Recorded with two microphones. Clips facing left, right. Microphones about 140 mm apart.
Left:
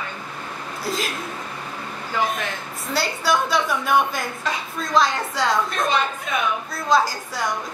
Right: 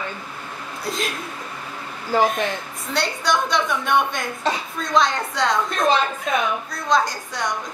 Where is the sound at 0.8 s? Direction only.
Centre (ahead or behind).